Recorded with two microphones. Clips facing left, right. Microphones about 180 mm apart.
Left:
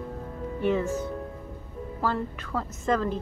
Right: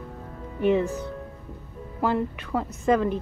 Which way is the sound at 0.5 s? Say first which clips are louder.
Right 4 dB; 15° right (ahead or behind).